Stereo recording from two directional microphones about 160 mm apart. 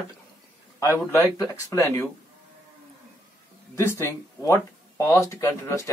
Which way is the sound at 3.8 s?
15° left (ahead or behind).